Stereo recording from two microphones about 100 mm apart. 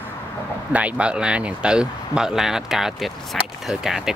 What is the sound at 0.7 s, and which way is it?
Speech, 15° right (ahead or behind).